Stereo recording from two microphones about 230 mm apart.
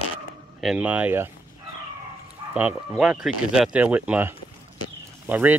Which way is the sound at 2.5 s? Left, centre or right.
Centre.